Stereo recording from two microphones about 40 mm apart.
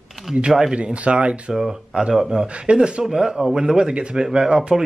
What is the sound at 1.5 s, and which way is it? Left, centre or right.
Speech, centre.